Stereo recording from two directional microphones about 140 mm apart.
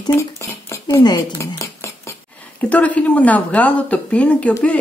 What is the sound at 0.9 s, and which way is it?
Dishes, 25° left (ahead or behind).